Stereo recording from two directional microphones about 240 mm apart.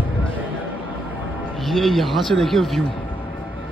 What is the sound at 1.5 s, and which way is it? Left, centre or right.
Speech, centre.